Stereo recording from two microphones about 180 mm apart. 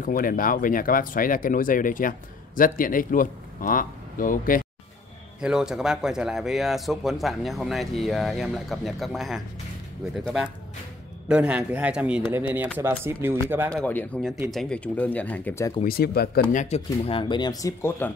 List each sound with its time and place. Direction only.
0.0 s speech: 50° left (ahead or behind)
5.4 s a man's voice: 5° right (ahead or behind)
13.7 s speech: 5° left (ahead or behind)
15.8 s speech: 60° left (ahead or behind)
16.5 s speech: 35° left (ahead or behind); by 18.1 s 10° left (ahead or behind)